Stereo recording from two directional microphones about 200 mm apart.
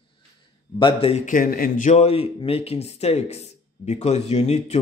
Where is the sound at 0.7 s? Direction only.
25° left (ahead or behind).